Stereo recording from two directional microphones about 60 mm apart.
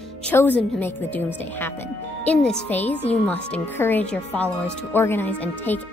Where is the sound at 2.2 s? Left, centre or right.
Centre.